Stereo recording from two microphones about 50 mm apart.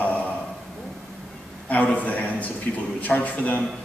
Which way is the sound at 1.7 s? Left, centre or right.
Left.